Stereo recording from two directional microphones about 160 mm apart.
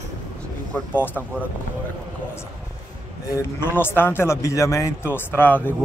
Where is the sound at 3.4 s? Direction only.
15° left (ahead or behind).